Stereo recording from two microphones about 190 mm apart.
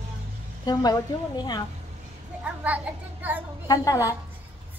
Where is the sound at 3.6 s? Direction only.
20° left (ahead or behind).